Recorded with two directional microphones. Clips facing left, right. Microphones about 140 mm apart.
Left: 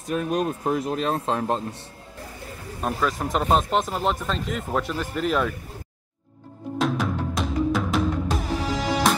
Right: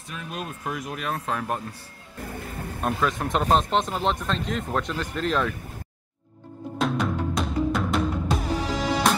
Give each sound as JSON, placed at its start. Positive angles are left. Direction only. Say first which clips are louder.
{"t": 0.0, "sound": "speech", "louder": "left 11 dB", "side_deg": 40}
{"t": 2.8, "sound": "speech", "louder": "even", "side_deg": 0}
{"t": 6.8, "sound": "music", "louder": "even", "side_deg": 0}